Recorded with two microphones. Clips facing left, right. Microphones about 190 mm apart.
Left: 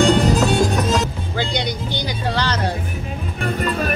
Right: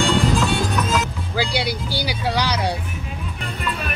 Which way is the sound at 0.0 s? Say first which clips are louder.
Left 4 dB; 40° left (ahead or behind).